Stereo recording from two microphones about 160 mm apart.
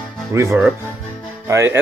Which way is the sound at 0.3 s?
20° right (ahead or behind).